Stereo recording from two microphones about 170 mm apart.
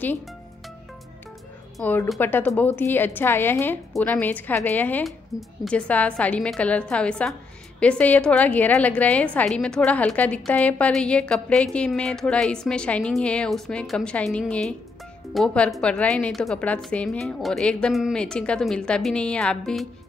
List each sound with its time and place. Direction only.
1.8 s a woman's voice: 10° left (ahead or behind)
5.3 s a woman's voice: centre (ahead or behind)